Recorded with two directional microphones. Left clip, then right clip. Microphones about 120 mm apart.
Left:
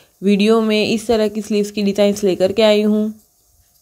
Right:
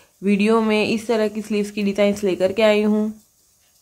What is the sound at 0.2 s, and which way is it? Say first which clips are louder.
Speech: left 4 dB; 35° left (ahead or behind).